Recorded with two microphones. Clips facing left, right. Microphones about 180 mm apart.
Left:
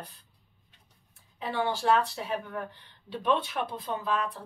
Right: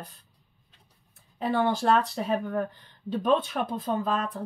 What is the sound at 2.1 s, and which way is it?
Speech, 40° right (ahead or behind).